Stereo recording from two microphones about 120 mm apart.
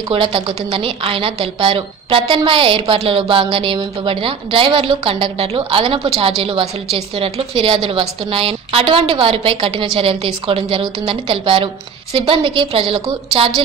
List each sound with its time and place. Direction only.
0.1 s a woman's voice: 50° right (ahead or behind)